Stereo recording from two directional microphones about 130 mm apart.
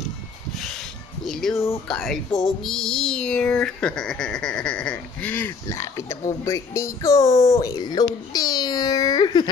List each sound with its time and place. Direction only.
1.2 s music: centre (ahead or behind)
1.9 s speech: centre (ahead or behind)
2.6 s a sound: 5° left (ahead or behind); by 9.5 s 35° left (ahead or behind)